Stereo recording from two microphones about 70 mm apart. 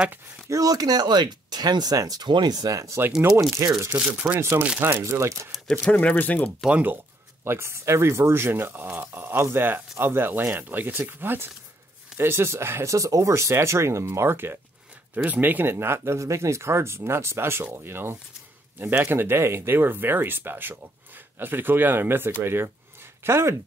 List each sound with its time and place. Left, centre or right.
0.5 s speech: right
3.3 s speech: right
3.9 s speech: right
4.4 s speech: right
5.9 s speech: left
6.7 s speech: right
7.4 s speech: right
12.9 s speech: right